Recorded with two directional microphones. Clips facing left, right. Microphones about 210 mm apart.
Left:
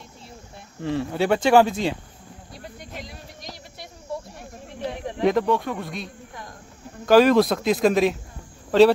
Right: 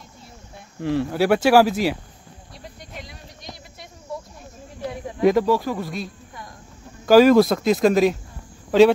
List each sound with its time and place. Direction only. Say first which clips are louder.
0.8 s speech: right 3 dB; centre (ahead or behind)
2.5 s a sound: left 1 dB; centre (ahead or behind)
5.2 s speech: right 3 dB; centre (ahead or behind)